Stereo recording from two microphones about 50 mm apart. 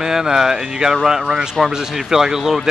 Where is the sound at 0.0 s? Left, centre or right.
Centre.